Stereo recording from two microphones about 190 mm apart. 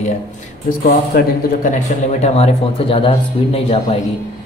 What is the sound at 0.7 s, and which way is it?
Speech, 50° left (ahead or behind).